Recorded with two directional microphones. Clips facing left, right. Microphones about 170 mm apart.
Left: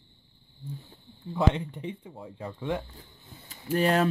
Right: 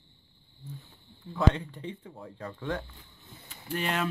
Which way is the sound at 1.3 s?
20° left (ahead or behind).